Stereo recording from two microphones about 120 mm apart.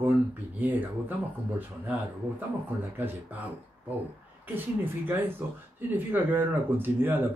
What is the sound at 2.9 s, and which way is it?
Speech, 15° right (ahead or behind).